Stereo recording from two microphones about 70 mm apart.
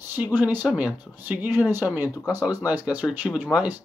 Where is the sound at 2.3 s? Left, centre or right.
Right.